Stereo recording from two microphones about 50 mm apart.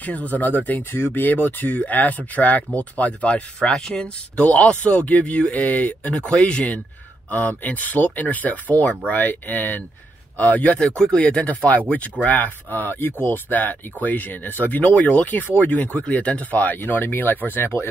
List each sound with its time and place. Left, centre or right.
0.0 s speech: left
0.9 s speech: left
7.2 s speech: left
10.8 s speech: centre; by 17.8 s left